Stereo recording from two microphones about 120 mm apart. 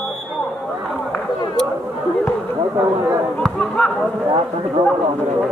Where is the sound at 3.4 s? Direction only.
5° left (ahead or behind).